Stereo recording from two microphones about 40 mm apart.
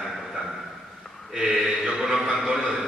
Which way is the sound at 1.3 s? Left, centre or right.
Centre.